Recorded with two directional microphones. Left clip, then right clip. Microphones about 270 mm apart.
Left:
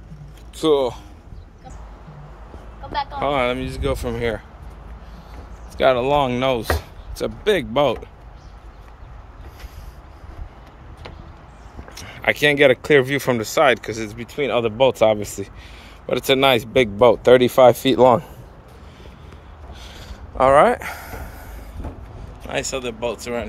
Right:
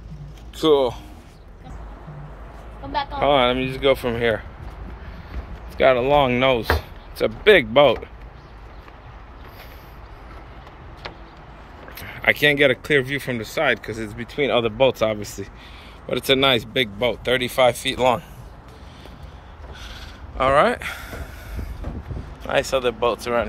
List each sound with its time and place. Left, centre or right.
0.6 s speech: centre
2.9 s a sound: right
3.2 s speech: centre
5.8 s speech: centre
11.9 s speech: centre; by 18.2 s left
19.8 s a sound: centre
22.5 s speech: centre